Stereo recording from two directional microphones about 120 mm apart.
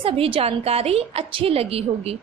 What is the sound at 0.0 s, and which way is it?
A woman's voice, 50° right (ahead or behind).